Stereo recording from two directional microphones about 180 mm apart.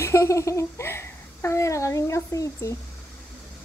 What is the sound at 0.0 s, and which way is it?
Speech, 15° left (ahead or behind).